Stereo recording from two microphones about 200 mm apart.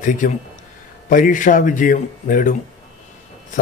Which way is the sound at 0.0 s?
40° left (ahead or behind).